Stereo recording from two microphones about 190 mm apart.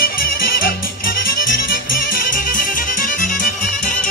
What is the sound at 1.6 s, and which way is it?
Music, 45° left (ahead or behind).